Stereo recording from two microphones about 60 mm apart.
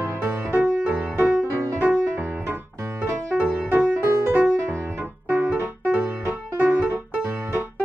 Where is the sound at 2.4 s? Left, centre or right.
Right.